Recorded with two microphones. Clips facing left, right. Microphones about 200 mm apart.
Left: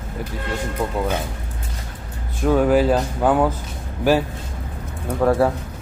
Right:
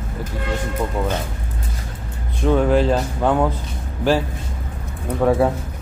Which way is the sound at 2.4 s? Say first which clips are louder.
Even; 5° left (ahead or behind).